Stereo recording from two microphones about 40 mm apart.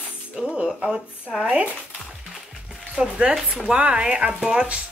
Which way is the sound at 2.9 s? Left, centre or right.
Right.